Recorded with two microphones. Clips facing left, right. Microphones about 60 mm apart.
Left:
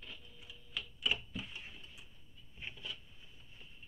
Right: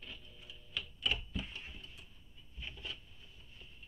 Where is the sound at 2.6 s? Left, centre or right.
Left.